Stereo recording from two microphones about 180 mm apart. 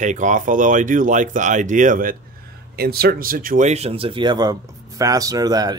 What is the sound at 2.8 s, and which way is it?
Speech, 60° right (ahead or behind).